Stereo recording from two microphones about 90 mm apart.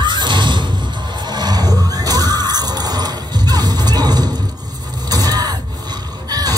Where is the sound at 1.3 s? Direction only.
50° right (ahead or behind).